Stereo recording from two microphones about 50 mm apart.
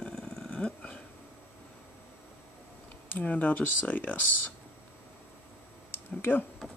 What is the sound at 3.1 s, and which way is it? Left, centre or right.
Speech, left.